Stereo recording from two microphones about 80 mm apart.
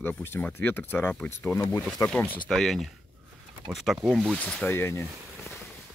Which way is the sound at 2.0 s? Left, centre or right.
Left.